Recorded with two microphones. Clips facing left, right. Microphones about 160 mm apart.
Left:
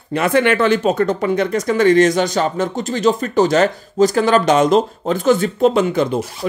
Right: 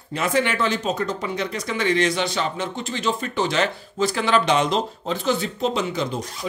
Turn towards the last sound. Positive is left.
turn(degrees=55)  # may be behind; listen again after turning